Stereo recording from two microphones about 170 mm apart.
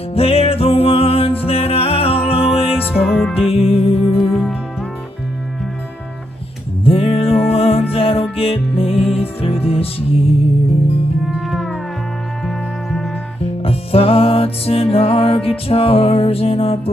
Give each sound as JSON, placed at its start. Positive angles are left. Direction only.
{"t": 0.1, "sound": "music", "side_deg": 35}
{"t": 2.9, "sound": "music", "side_deg": -5}
{"t": 3.3, "sound": "music", "side_deg": 35}
{"t": 4.2, "sound": "music", "side_deg": 0}
{"t": 6.8, "sound": "music", "side_deg": 35}
{"t": 11.2, "sound": "music", "side_deg": 0}
{"t": 13.6, "sound": "music", "side_deg": 35}